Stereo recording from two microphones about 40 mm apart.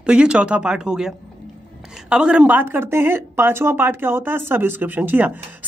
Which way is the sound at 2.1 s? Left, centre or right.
Right.